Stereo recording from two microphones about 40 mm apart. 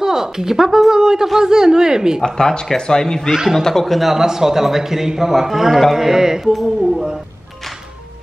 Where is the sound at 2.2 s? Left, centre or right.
Centre.